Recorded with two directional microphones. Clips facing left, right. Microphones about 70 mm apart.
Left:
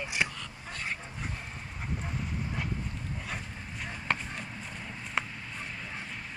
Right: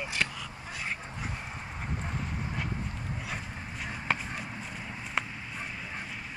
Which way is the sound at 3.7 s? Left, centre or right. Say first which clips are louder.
Right 1 dB; centre.